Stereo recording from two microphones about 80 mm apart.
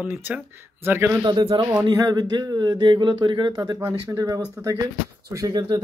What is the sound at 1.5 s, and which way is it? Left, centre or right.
Speech, right.